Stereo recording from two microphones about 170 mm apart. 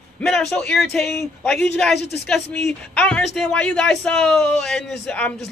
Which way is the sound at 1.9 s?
75° left (ahead or behind).